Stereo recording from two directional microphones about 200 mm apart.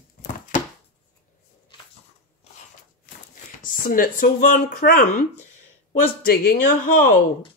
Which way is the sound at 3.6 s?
45° left (ahead or behind).